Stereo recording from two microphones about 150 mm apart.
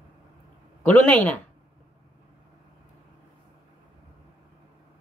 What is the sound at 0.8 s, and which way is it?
Speech, 10° left (ahead or behind).